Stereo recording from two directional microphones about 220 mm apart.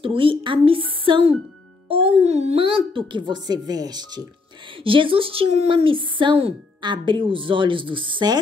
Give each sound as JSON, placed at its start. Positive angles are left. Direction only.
{"t": 0.0, "sound": "speech", "side_deg": -25}